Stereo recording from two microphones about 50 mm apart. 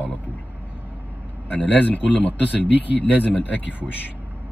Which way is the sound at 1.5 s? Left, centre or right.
Left.